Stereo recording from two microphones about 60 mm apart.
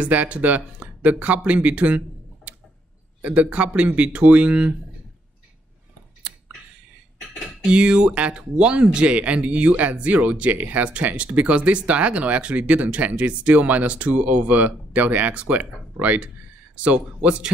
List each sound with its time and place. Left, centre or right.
0.0 s speech: right
7.7 s speech: centre